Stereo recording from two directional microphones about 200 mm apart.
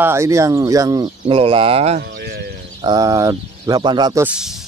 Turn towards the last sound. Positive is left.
turn(degrees=-5)  # may be behind; listen again after turning